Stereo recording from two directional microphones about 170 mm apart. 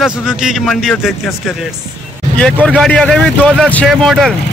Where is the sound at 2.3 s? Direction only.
10° left (ahead or behind).